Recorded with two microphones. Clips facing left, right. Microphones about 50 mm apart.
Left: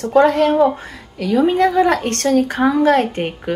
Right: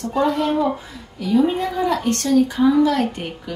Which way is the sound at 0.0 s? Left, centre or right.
Left.